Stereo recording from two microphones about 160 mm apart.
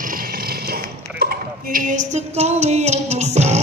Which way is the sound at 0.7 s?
70° right (ahead or behind).